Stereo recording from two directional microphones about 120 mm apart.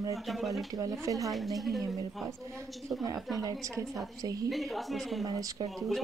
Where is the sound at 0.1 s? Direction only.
Centre (ahead or behind).